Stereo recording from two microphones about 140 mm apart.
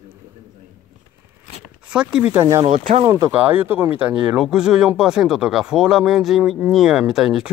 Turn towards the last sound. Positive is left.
turn(degrees=-5)  # may be behind; listen again after turning